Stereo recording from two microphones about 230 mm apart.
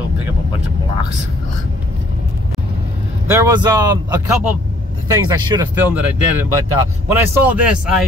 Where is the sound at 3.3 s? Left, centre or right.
Centre.